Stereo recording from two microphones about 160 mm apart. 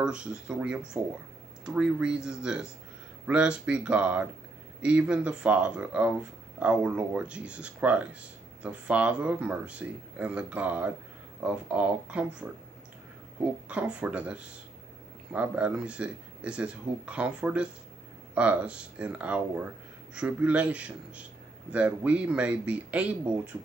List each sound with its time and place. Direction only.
0.0 s speech: 5° right (ahead or behind)
13.7 s speech: 10° right (ahead or behind)